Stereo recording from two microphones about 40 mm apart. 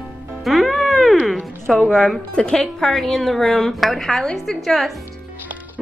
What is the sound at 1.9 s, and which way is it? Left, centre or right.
Speech, centre.